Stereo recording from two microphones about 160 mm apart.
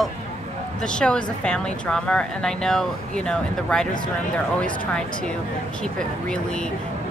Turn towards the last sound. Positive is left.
turn(degrees=5)  # may be behind; listen again after turning